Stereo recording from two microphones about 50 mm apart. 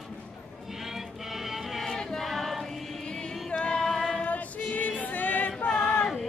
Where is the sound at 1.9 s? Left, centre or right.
Centre.